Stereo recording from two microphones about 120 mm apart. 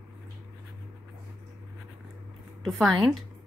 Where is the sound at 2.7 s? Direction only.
Centre (ahead or behind).